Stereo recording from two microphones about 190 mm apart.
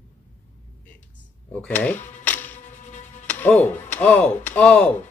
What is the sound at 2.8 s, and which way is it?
Music, 40° left (ahead or behind).